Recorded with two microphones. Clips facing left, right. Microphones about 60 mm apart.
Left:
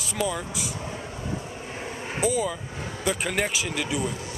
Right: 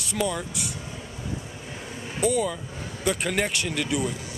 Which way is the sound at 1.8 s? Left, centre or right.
Left.